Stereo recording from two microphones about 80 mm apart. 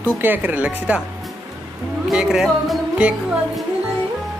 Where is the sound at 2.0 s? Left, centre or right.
Centre.